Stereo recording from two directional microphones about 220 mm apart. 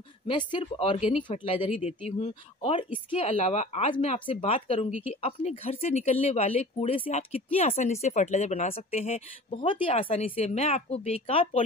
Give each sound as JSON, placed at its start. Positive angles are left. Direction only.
{"t": 0.3, "sound": "speech", "side_deg": 20}